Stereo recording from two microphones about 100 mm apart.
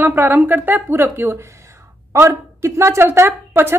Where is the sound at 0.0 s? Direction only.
20° right (ahead or behind).